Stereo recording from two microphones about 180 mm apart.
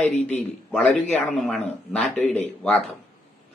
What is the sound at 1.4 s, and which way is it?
A man's voice, centre (ahead or behind).